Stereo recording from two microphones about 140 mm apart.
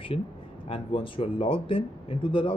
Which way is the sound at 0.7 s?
40° left (ahead or behind).